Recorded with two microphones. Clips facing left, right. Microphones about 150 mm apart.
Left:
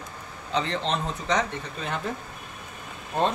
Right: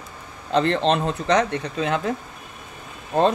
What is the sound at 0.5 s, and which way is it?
Speech, 60° right (ahead or behind).